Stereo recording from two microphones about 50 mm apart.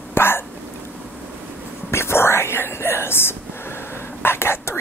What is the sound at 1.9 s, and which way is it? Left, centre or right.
Whispering, left.